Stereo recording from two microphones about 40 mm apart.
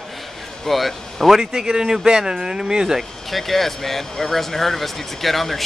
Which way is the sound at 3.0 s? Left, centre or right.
Centre.